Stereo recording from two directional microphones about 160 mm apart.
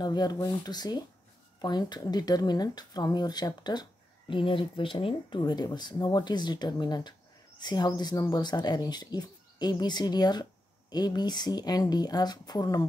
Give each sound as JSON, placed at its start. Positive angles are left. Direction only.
{"t": 0.0, "sound": "speech", "side_deg": 25}